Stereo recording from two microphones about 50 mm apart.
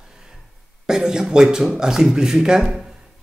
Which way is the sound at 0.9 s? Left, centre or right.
Centre.